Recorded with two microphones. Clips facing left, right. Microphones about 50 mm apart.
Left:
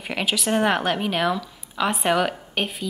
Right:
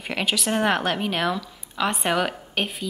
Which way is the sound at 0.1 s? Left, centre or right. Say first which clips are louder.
Left 1 dB; centre.